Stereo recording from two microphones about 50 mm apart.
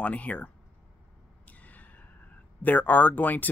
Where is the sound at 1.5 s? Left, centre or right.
Left.